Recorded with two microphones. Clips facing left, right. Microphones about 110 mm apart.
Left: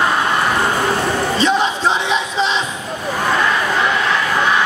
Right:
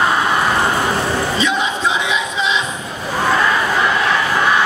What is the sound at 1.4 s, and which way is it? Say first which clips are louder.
Crowd: left 2 dB; 35° left (ahead or behind).